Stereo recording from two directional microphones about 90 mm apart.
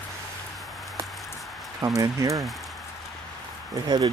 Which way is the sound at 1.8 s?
40° right (ahead or behind).